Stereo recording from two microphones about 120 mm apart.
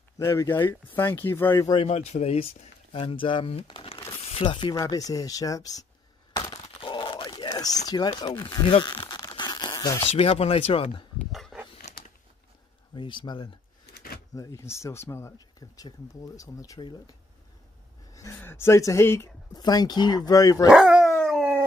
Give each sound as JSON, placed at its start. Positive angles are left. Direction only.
{"t": 0.2, "sound": "speech", "side_deg": 20}
{"t": 1.9, "sound": "speech", "side_deg": 60}
{"t": 2.9, "sound": "speech", "side_deg": 45}
{"t": 6.3, "sound": "a sound", "side_deg": 35}
{"t": 10.1, "sound": "speech", "side_deg": 55}
{"t": 11.5, "sound": "dog", "side_deg": -5}
{"t": 12.9, "sound": "speech", "side_deg": 40}
{"t": 14.3, "sound": "speech", "side_deg": 30}
{"t": 18.1, "sound": "speech", "side_deg": 25}
{"t": 19.5, "sound": "speech", "side_deg": 35}
{"t": 20.7, "sound": "dog", "side_deg": -5}
{"t": 21.3, "sound": "howl", "side_deg": -5}